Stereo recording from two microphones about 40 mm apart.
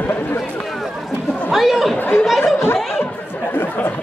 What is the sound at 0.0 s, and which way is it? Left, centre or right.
Run, left.